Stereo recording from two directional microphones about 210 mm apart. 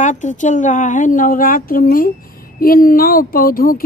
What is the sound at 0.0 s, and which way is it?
A woman's voice, 35° left (ahead or behind).